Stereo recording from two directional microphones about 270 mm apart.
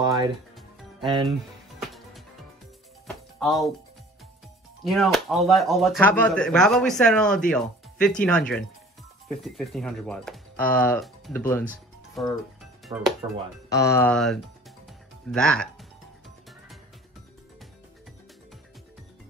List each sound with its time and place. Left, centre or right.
1.0 s speech: centre
3.3 s speech: centre
4.8 s speech: centre
11.6 s music: centre
12.9 s speech: centre
13.7 s speech: centre
14.9 s music: centre